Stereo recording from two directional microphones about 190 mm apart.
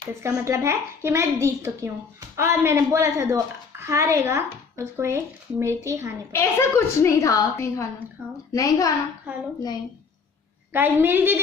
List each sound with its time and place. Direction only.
0.1 s a child's voice: 15° right (ahead or behind)
6.3 s a woman's voice: 15° left (ahead or behind)
10.7 s a child's voice: 10° right (ahead or behind)